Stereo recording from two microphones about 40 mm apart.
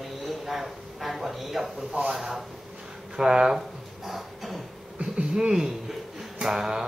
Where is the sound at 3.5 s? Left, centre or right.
Centre.